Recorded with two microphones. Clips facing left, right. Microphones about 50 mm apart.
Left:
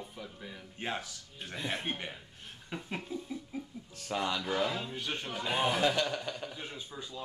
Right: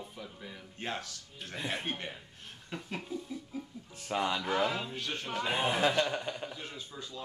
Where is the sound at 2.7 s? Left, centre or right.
Centre.